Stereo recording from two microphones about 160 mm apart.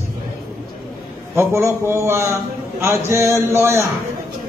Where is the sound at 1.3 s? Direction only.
15° right (ahead or behind).